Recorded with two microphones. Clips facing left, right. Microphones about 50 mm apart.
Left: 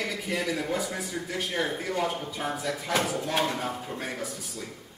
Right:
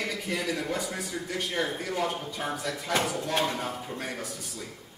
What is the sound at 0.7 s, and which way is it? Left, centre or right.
Speech, centre.